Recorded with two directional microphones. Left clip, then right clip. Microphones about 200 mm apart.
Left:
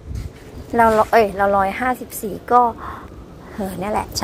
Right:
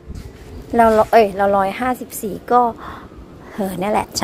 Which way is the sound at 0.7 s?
25° right (ahead or behind).